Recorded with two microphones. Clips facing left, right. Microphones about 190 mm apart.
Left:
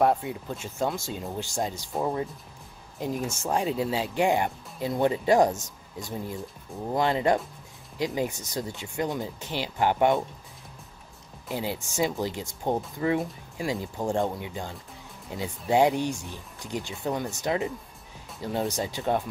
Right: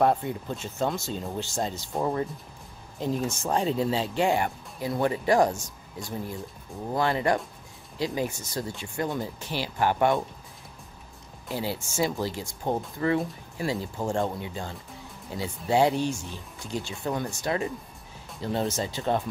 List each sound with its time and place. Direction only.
0.0 s speech: 10° left (ahead or behind)
11.4 s speech: 20° left (ahead or behind)